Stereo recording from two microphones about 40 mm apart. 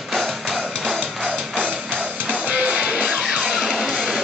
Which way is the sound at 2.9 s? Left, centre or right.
Centre.